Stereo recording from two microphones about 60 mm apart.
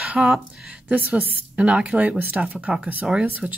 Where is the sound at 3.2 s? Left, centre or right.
Right.